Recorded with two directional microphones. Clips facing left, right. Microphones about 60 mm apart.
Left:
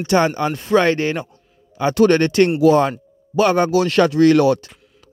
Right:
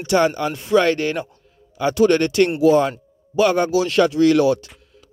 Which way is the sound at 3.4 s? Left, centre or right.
Left.